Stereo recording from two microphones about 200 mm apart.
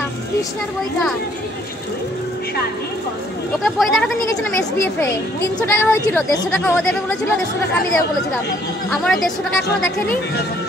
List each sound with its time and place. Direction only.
3.6 s speech: centre (ahead or behind)
4.7 s speech: 10° left (ahead or behind)
8.9 s speech: centre (ahead or behind)